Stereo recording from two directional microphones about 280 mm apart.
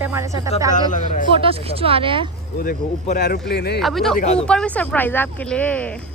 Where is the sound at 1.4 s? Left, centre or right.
Centre.